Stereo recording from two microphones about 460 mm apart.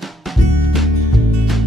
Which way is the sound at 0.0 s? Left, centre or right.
Centre.